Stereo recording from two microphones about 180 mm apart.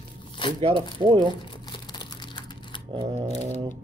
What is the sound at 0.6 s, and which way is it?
Speech, 35° right (ahead or behind).